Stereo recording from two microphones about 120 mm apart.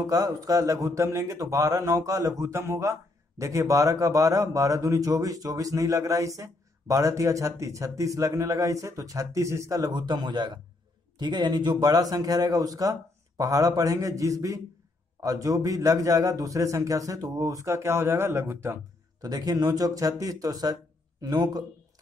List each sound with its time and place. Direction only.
0.0 s a man's voice: 30° right (ahead or behind)
19.2 s a man's voice: 30° right (ahead or behind)